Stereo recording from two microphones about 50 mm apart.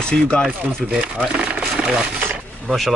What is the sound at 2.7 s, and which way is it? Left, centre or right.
Speech, centre.